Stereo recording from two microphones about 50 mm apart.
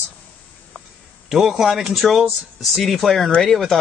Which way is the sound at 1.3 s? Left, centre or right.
Centre.